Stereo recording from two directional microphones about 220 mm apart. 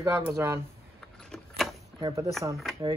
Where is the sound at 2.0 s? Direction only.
15° right (ahead or behind).